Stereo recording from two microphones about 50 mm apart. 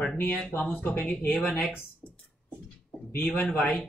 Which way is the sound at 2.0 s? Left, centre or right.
Left.